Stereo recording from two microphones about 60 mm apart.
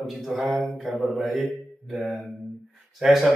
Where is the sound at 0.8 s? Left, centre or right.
Centre.